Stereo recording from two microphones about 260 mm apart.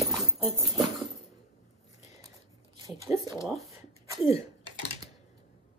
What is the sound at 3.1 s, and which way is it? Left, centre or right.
Speech, centre.